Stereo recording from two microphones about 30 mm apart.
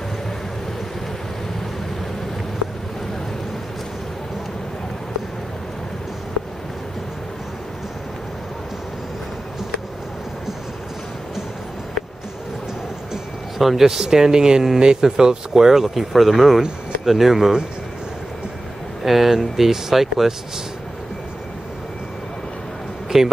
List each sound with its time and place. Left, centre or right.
13.6 s speech: centre
13.8 s speech: centre
19.0 s speech: centre
23.0 s a sound: centre